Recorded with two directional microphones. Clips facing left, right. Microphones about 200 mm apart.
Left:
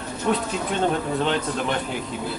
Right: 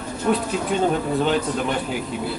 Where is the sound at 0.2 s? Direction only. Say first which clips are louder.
Right 2 dB; 5° right (ahead or behind).